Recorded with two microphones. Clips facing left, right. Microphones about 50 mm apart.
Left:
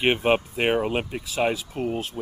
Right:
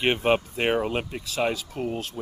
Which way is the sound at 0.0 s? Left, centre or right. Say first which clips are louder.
Left 1 dB; centre.